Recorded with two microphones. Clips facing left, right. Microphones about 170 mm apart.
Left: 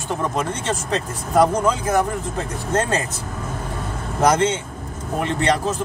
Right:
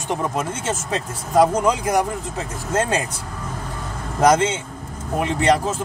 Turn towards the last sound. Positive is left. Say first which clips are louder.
# right 2 dB
turn(degrees=-10)  # may be behind; listen again after turning